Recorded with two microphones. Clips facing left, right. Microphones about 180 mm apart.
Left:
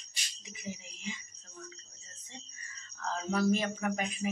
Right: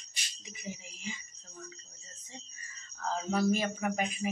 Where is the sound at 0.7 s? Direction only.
Centre (ahead or behind).